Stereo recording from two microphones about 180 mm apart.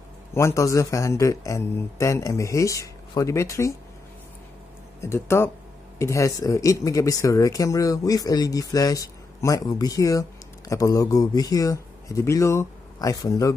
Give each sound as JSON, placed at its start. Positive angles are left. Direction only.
{"t": 0.3, "sound": "speech", "side_deg": 15}
{"t": 5.0, "sound": "speech", "side_deg": 15}